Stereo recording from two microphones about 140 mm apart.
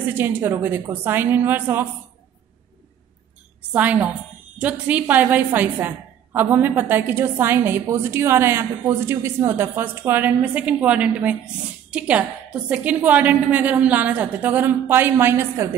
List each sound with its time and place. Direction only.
0.2 s a woman's voice: 15° right (ahead or behind)
3.7 s a woman's voice: 10° right (ahead or behind)